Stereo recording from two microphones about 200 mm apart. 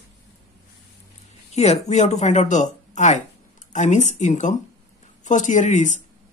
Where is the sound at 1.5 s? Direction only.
35° left (ahead or behind).